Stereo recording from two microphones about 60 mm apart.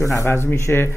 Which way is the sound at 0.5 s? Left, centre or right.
Left.